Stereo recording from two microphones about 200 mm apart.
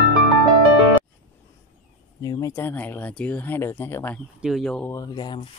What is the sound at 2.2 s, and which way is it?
Speech, 20° left (ahead or behind).